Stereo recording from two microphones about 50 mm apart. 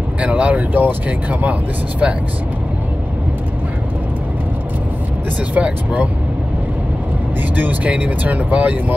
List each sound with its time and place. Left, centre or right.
0.2 s speech: right
5.5 s speech: right
7.5 s speech: right